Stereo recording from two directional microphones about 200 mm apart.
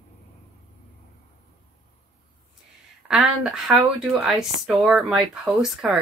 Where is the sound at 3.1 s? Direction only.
5° right (ahead or behind).